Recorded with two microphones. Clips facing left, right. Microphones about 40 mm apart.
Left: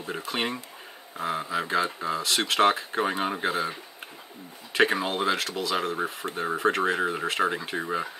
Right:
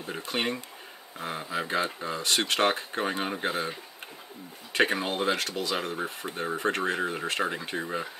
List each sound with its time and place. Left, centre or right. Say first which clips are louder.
0.3 s speech: right 1 dB; centre
2.0 s speech: left 4 dB; centre
2.2 s speech: left 3 dB; centre
4.7 s speech: left 2 dB; centre